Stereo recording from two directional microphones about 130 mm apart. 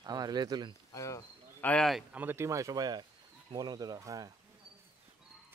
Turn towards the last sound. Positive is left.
turn(degrees=-25)  # may be behind; listen again after turning